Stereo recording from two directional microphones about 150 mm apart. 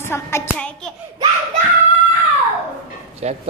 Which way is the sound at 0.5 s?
5° left (ahead or behind).